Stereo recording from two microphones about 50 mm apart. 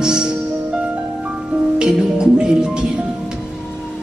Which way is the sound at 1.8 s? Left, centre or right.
Centre.